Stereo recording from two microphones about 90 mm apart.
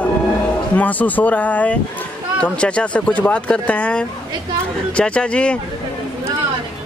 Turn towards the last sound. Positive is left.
turn(degrees=10)  # may be behind; listen again after turning